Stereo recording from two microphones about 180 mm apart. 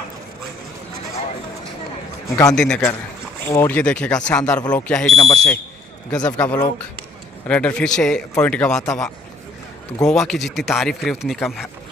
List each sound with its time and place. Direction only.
2.2 s a man's voice: 20° left (ahead or behind)
2.5 s speech: 5° left (ahead or behind)
10.0 s speech: centre (ahead or behind)